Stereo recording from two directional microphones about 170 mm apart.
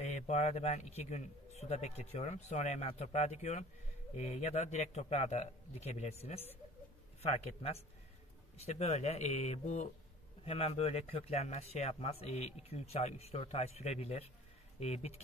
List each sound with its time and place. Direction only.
0.0 s speech: 40° left (ahead or behind)